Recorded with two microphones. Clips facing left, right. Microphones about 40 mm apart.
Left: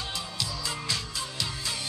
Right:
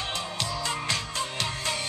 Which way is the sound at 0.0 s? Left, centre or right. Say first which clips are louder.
Right 3 dB; right.